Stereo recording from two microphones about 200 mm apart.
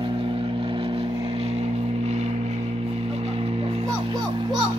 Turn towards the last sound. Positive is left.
turn(degrees=-20)  # may be behind; listen again after turning